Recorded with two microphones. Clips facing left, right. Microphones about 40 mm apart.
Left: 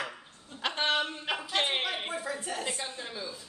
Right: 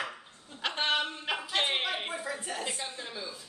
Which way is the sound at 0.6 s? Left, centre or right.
Centre.